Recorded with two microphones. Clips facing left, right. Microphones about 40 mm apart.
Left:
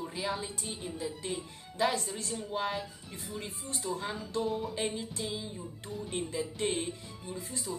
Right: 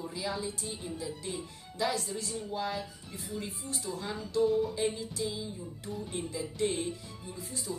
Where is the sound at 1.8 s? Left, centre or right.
Left.